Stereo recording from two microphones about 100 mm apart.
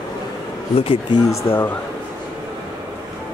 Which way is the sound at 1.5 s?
55° left (ahead or behind).